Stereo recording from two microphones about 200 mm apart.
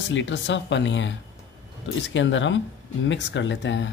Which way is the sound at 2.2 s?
65° left (ahead or behind).